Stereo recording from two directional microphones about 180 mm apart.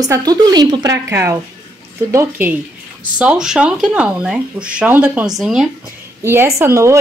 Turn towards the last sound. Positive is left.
turn(degrees=-15)  # may be behind; listen again after turning